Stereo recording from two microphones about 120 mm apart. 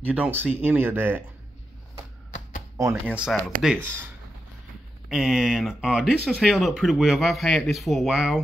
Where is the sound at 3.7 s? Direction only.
20° right (ahead or behind).